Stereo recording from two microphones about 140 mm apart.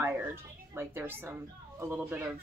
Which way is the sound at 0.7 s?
15° right (ahead or behind).